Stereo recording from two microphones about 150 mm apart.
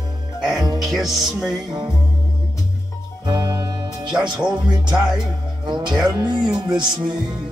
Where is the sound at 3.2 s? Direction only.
30° right (ahead or behind).